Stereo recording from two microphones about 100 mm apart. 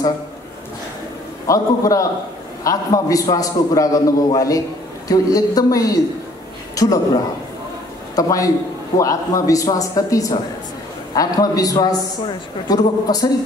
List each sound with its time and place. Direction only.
1.5 s a man's voice: 35° left (ahead or behind)
6.7 s a sound: 35° left (ahead or behind)
8.2 s a man's voice: 35° left (ahead or behind)